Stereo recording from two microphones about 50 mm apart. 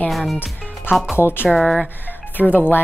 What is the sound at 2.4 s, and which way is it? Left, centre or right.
Speech, left.